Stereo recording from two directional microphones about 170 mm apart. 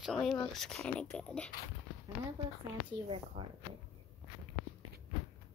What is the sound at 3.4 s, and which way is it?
Speech, 30° right (ahead or behind).